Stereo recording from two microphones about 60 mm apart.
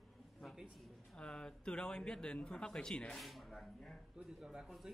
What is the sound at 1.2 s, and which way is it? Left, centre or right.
A man's voice, centre.